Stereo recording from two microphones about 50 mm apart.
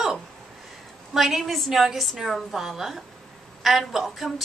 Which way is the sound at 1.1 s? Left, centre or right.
Centre.